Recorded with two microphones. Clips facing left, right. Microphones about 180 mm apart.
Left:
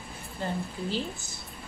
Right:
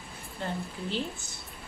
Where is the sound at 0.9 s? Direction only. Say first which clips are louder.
Right 2 dB; centre (ahead or behind).